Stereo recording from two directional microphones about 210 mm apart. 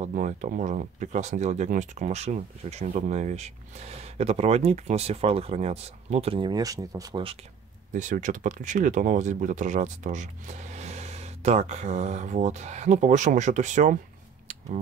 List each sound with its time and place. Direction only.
0.0 s speech: 35° right (ahead or behind); by 7.3 s 20° right (ahead or behind)
7.9 s speech: 35° right (ahead or behind)